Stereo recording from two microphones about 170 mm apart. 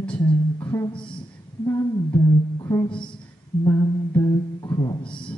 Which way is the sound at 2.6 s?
15° left (ahead or behind).